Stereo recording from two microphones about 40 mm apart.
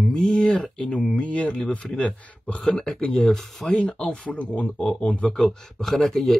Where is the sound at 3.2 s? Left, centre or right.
Centre.